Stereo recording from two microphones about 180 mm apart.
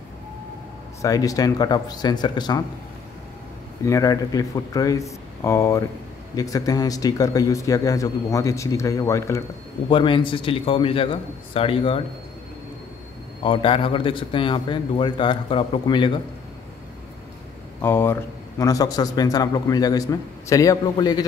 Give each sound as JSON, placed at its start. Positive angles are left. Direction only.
{"t": 1.0, "sound": "a man's voice", "side_deg": 20}
{"t": 3.8, "sound": "a man's voice", "side_deg": 20}
{"t": 13.4, "sound": "a man's voice", "side_deg": 30}
{"t": 17.8, "sound": "a man's voice", "side_deg": 15}